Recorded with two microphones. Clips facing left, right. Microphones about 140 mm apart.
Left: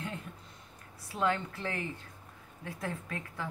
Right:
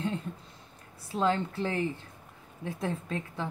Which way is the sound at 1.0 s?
30° right (ahead or behind).